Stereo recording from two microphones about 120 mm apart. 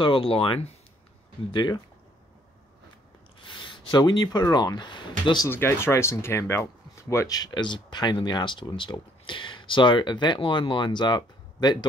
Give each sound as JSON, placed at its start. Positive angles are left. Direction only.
{"t": 0.0, "sound": "speech", "side_deg": 50}
{"t": 1.5, "sound": "speech", "side_deg": 40}
{"t": 3.3, "sound": "speech", "side_deg": 45}
{"t": 5.5, "sound": "speech", "side_deg": 20}